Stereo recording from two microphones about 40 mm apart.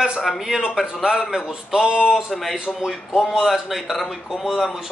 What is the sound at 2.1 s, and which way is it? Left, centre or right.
Speech, centre.